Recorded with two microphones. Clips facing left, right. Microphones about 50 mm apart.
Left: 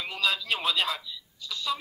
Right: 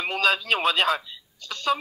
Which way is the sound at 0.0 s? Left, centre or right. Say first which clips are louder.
Right 6 dB; right.